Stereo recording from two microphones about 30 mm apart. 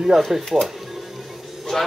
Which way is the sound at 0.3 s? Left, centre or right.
Centre.